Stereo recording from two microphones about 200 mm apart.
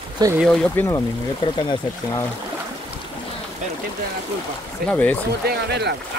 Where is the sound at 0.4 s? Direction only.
5° left (ahead or behind); by 1.8 s 20° left (ahead or behind).